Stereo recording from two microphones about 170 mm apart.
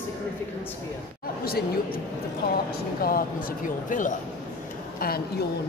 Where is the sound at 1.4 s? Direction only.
60° left (ahead or behind).